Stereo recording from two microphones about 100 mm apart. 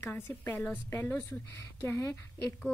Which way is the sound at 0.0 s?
20° left (ahead or behind).